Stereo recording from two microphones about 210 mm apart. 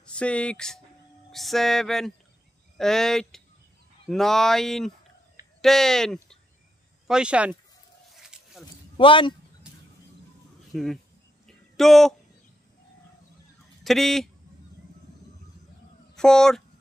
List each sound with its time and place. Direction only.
0.0 s speech: 5° left (ahead or behind)
1.3 s music: centre (ahead or behind)
5.6 s speech: centre (ahead or behind)
7.1 s music: 5° right (ahead or behind)
8.1 s a sound: centre (ahead or behind)
8.9 s speech: 25° left (ahead or behind)
10.7 s speech: centre (ahead or behind)
11.4 s a sound: centre (ahead or behind)
13.8 s music: centre (ahead or behind)
16.2 s music: 5° left (ahead or behind)